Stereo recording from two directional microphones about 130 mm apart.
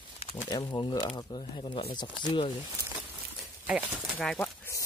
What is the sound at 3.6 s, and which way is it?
Speech, 10° right (ahead or behind).